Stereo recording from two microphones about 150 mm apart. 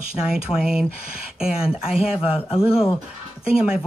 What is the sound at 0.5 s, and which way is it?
Speech, 5° right (ahead or behind).